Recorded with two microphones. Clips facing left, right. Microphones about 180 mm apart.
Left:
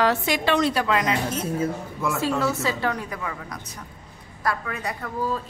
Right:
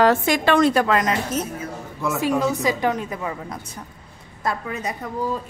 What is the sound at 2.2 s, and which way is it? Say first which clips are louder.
A woman's voice: right 4 dB; 15° right (ahead or behind).